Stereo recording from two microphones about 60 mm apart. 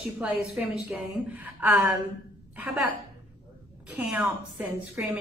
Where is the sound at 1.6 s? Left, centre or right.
Right.